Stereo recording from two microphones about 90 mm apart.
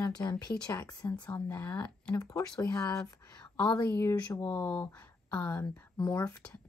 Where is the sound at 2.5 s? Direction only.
40° left (ahead or behind).